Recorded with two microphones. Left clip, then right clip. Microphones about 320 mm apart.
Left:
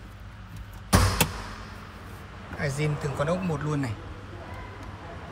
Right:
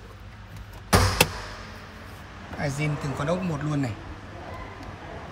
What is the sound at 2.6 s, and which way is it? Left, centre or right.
Speech, centre.